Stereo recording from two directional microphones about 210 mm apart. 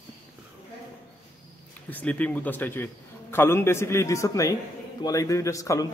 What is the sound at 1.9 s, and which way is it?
A man's voice, 10° left (ahead or behind).